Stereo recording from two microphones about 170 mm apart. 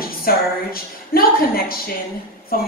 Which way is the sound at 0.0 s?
60° left (ahead or behind).